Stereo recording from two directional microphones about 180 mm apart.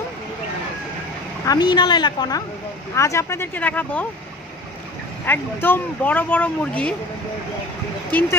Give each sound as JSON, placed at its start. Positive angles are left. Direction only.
{"t": 1.4, "sound": "a woman's voice", "side_deg": 20}
{"t": 5.2, "sound": "speech", "side_deg": 10}